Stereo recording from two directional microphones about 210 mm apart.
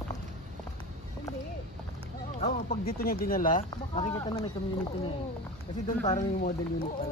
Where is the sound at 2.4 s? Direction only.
30° left (ahead or behind).